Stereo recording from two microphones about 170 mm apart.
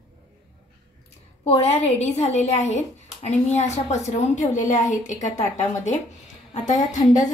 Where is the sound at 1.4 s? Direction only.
40° left (ahead or behind).